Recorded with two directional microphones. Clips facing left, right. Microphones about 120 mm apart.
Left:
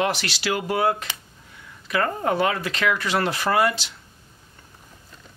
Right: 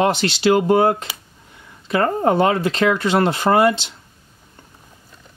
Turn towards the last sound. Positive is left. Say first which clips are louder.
# right 6 dB
turn(degrees=-25)  # may be behind; listen again after turning